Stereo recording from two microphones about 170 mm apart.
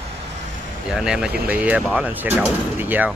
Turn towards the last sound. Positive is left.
turn(degrees=-10)  # may be behind; listen again after turning